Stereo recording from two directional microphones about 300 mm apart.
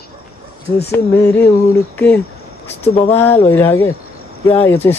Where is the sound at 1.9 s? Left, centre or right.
Centre.